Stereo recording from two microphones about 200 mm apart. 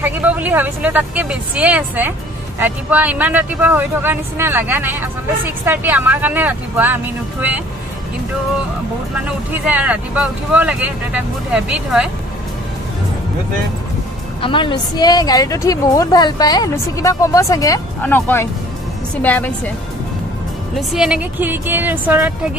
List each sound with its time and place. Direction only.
0.0 s speech: 10° right (ahead or behind)
9.5 s speech: 10° right (ahead or behind)
14.4 s a woman's voice: 25° left (ahead or behind); by 19.7 s 10° left (ahead or behind)
20.9 s speech: 5° right (ahead or behind)